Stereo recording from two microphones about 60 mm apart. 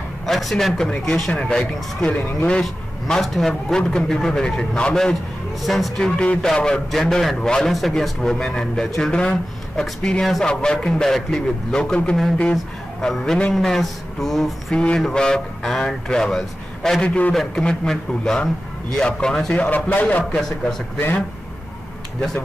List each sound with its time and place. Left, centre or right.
0.3 s speech: centre
5.6 s speech: centre
5.9 s speech: centre
12.5 s speech: centre
13.2 s speech: centre
13.5 s speech: centre
14.7 s speech: centre
17.0 s a man's voice: centre
17.3 s a man's voice: centre; by 20.3 s left